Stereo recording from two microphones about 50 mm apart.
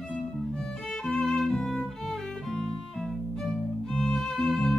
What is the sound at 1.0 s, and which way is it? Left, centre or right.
Violin, centre.